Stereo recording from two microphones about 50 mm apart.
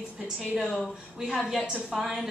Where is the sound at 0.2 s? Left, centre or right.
Centre.